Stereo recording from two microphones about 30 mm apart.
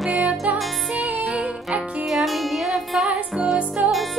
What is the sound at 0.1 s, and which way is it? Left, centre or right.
Music, right.